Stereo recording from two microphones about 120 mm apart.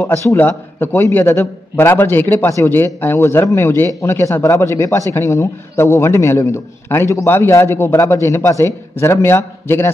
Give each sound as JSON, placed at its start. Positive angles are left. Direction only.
{"t": 0.4, "sound": "a man's voice", "side_deg": 15}